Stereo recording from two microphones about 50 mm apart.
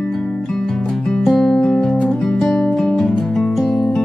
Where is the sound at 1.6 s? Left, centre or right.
Centre.